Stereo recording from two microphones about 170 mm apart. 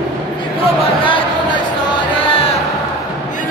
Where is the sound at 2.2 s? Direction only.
35° left (ahead or behind).